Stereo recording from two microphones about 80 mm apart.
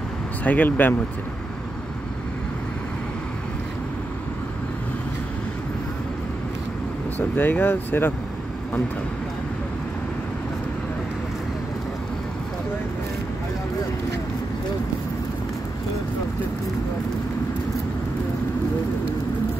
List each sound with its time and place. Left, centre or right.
0.4 s speech: left
7.2 s speech: left